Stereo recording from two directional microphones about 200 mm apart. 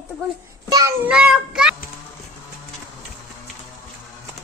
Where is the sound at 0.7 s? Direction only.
20° right (ahead or behind).